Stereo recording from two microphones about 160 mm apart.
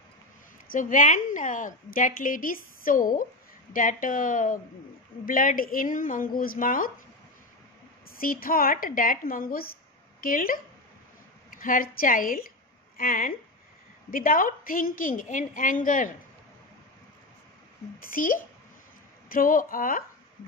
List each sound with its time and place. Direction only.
0.7 s a woman's voice: 55° left (ahead or behind)
8.2 s a woman's voice: 65° left (ahead or behind)
17.9 s a woman's voice: 60° left (ahead or behind)